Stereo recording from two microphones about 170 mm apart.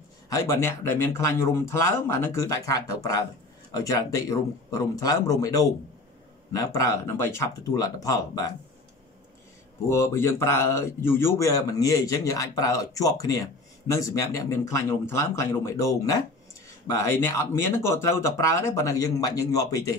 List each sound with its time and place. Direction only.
0.3 s a man's voice: 20° left (ahead or behind)
9.8 s a man's voice: 15° left (ahead or behind)